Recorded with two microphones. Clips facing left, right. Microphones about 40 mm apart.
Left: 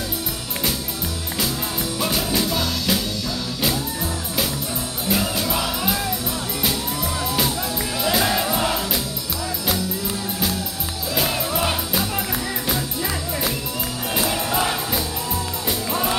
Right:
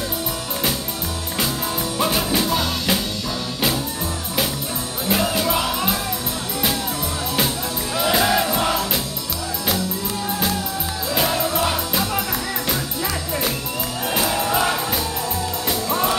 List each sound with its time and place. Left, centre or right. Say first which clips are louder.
2.0 s music: right 2 dB; centre
5.0 s music: right 3 dB; centre
8.0 s music: right 3 dB; centre
8.5 s music: right 1 dB; centre
11.1 s music: right 2 dB; centre
14.1 s music: right 2 dB; centre
15.9 s music: right 3 dB; centre